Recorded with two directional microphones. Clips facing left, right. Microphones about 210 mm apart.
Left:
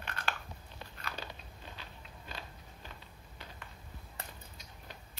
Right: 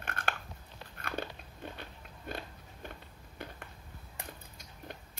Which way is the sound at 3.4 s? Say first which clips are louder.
Right 6 dB; 55° right (ahead or behind).